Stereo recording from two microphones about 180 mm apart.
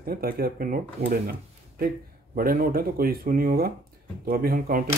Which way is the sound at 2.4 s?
55° right (ahead or behind).